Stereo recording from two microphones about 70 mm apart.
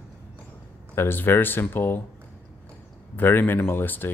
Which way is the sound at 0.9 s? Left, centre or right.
Left.